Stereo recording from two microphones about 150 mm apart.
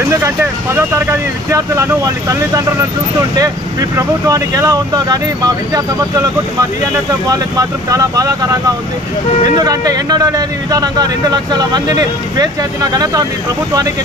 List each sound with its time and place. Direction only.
0.2 s a man's voice: 15° right (ahead or behind)
7.2 s a man's voice: 25° right (ahead or behind)
9.6 s a man's voice: 25° right (ahead or behind)